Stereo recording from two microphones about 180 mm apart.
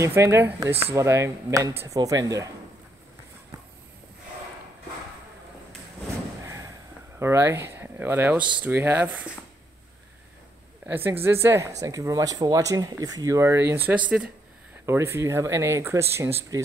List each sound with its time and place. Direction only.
0.0 s speech: 15° right (ahead or behind)
6.4 s a sound: 15° right (ahead or behind)
7.2 s speech: 15° right (ahead or behind)
10.9 s speech: 10° right (ahead or behind)